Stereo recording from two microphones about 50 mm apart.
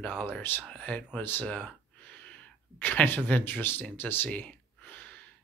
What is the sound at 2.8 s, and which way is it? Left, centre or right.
Speech, left.